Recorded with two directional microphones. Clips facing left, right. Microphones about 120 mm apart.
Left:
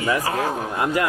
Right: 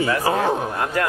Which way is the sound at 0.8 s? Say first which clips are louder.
Left 5 dB; 10° left (ahead or behind).